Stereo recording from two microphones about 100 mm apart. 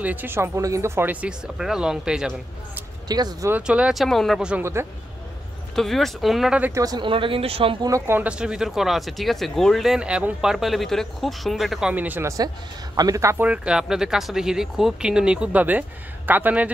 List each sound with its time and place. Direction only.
0.0 s speech: 20° right (ahead or behind)
1.2 s speech: 5° right (ahead or behind)
3.1 s speech: 45° right (ahead or behind)
3.6 s speech: 10° right (ahead or behind)
4.4 s speech: 10° right (ahead or behind)
5.8 s speech: centre (ahead or behind)
6.7 s speech: 35° right (ahead or behind)
7.0 s speech: 60° right (ahead or behind)
8.1 s speech: 15° right (ahead or behind)
11.9 s speech: 15° right (ahead or behind)
12.9 s speech: 35° right (ahead or behind)
13.4 s speech: 10° right (ahead or behind)